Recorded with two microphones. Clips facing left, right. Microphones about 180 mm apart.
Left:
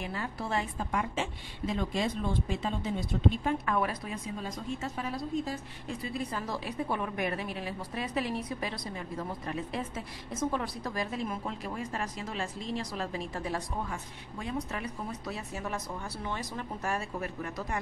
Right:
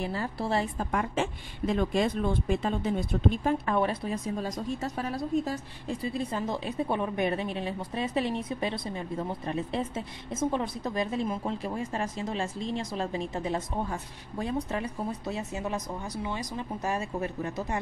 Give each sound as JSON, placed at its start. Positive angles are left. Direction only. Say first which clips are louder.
{"t": 0.0, "sound": "a woman's voice", "louder": "right 5 dB", "side_deg": -35}
{"t": 0.7, "sound": "a woman's voice", "louder": "right 3 dB", "side_deg": -50}
{"t": 3.6, "sound": "a woman's voice", "louder": "right 4 dB", "side_deg": -30}
{"t": 4.1, "sound": "a woman's voice", "louder": "right 6 dB", "side_deg": -40}